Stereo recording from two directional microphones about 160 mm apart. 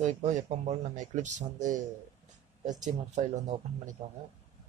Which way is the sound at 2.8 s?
45° right (ahead or behind).